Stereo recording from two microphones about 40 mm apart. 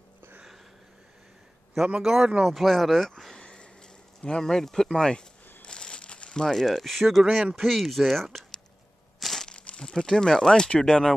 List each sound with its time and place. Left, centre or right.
2.0 s speech: centre
3.3 s a sound: left
5.6 s crumpling: left; by 7.4 s centre
7.5 s speech: centre
9.2 s crumpling: centre
9.5 s speech: left